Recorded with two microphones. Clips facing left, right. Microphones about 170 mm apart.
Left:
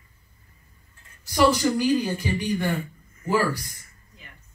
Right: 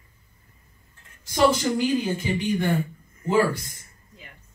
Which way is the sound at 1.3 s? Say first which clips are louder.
Even; 25° right (ahead or behind).